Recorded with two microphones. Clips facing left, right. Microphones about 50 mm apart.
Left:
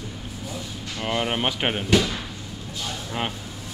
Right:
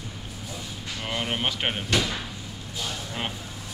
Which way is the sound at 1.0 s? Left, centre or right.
Centre.